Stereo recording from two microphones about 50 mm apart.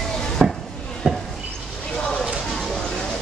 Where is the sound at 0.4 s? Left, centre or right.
Right.